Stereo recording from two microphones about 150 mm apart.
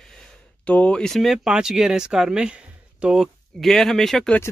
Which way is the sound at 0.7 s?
10° left (ahead or behind).